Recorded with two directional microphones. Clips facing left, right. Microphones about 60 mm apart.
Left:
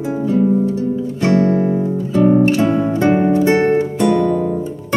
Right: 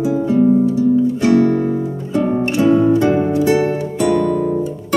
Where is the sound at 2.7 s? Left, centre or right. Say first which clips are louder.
Right 2 dB; left.